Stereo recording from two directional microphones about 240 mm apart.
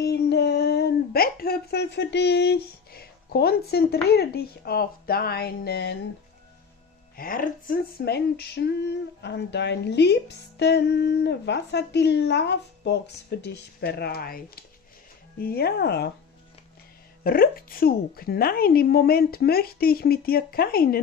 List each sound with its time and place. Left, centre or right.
0.0 s speech: left
7.2 s a sound: left
15.3 s a woman's voice: left
17.2 s a woman's voice: left